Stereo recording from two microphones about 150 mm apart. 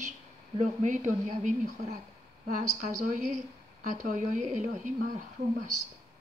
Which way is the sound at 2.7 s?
50° right (ahead or behind).